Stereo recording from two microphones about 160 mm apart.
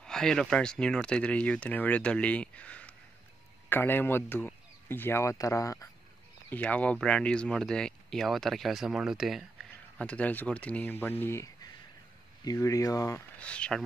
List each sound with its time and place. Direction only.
0.0 s speech: 5° left (ahead or behind); by 5.9 s 20° left (ahead or behind)
6.5 s speech: 10° left (ahead or behind)
13.4 s speech: 5° left (ahead or behind)